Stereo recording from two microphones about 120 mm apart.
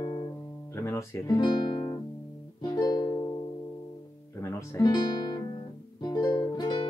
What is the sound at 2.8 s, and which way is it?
Music, 30° left (ahead or behind).